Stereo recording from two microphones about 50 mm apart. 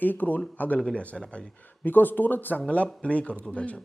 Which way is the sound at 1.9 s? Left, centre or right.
Left.